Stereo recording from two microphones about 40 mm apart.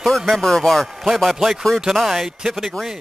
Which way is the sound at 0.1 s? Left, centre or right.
Centre.